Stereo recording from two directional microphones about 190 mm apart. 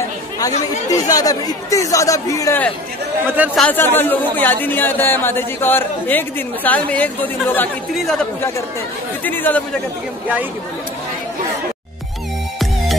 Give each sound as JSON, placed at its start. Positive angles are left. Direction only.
{"t": 0.8, "sound": "a man's voice", "side_deg": 20}